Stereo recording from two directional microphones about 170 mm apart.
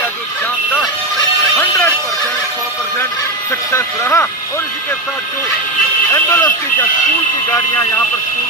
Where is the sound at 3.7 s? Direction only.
15° left (ahead or behind).